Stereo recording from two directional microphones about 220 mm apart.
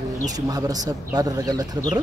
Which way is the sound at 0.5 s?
15° right (ahead or behind).